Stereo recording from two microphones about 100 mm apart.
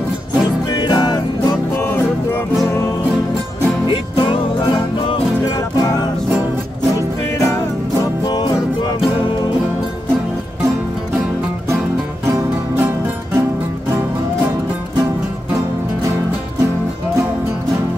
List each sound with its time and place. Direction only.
0.7 s music: 45° left (ahead or behind)
1.8 s music: 25° left (ahead or behind)
3.9 s music: 55° left (ahead or behind)
5.4 s music: 40° left (ahead or behind)
12.7 s music: 25° right (ahead or behind)